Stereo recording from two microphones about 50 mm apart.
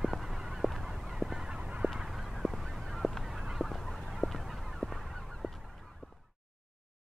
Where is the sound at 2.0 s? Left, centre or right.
Centre.